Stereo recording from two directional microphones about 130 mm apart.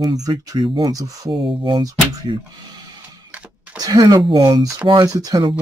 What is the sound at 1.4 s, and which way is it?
Speech, 40° right (ahead or behind).